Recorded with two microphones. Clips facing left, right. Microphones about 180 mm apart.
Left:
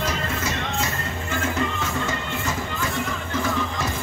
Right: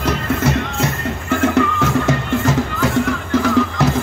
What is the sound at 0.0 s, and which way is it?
Music, 65° right (ahead or behind).